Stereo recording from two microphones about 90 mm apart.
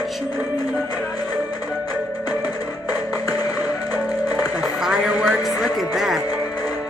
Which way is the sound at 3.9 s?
45° left (ahead or behind).